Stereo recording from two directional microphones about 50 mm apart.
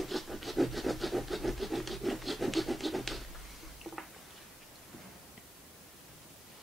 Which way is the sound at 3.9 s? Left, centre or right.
Centre.